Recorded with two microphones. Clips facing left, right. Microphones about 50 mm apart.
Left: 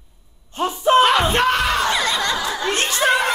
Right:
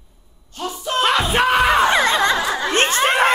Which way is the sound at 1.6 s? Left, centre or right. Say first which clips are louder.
Right 4 dB; right.